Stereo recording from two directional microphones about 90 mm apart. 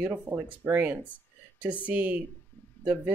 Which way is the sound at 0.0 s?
20° right (ahead or behind).